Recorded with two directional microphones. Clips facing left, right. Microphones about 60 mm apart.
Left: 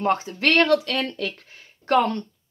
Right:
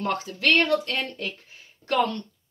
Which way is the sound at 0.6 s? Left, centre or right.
Left.